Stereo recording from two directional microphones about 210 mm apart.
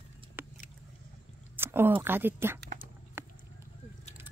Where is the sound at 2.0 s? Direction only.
10° right (ahead or behind).